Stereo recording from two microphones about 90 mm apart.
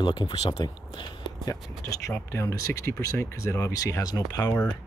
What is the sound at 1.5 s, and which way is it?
Speech, 40° left (ahead or behind).